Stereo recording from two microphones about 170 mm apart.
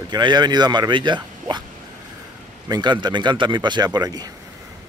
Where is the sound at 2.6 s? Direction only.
25° right (ahead or behind).